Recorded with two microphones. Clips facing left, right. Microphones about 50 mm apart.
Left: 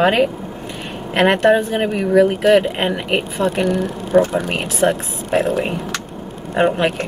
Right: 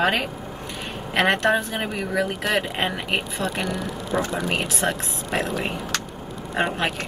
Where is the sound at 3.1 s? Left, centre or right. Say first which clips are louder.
Left 7 dB; left.